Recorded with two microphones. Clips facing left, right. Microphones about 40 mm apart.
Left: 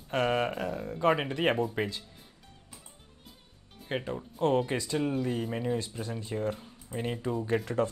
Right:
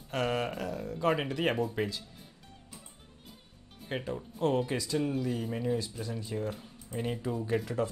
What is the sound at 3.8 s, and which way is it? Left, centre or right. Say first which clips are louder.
Speech: left 2 dB; centre.